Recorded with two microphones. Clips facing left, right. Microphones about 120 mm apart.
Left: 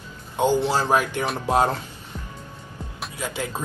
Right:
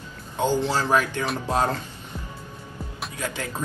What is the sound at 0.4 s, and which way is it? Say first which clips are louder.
Speech: left 2 dB; 15° left (ahead or behind).